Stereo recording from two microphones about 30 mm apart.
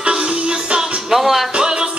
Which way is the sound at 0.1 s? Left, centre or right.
Right.